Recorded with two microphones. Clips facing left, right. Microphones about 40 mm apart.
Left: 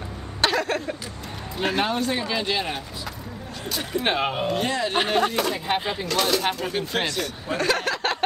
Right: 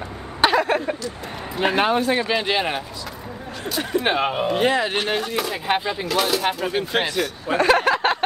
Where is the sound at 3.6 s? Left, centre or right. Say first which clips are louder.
Right 4 dB; centre.